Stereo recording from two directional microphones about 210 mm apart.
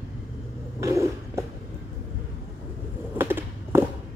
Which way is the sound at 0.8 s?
15° right (ahead or behind).